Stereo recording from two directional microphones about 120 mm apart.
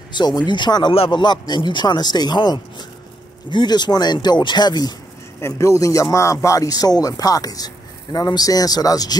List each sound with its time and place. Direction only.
0.1 s speech: 40° left (ahead or behind)
5.4 s speech: 25° left (ahead or behind)